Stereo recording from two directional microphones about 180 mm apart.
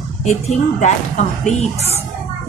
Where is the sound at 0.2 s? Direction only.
40° left (ahead or behind).